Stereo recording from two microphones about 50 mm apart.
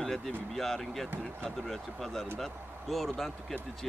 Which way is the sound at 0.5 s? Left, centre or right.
Centre.